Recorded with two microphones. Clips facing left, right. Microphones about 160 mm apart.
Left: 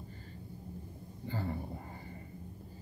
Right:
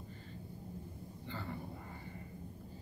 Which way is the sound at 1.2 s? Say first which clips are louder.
Left 6 dB; 40° left (ahead or behind).